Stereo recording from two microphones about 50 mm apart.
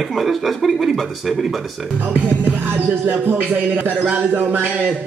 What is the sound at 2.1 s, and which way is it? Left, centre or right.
Speech, right.